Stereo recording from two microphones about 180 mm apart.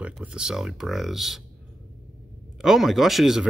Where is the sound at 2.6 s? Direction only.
Centre (ahead or behind).